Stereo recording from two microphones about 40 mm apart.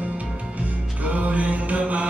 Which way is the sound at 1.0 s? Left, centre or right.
Right.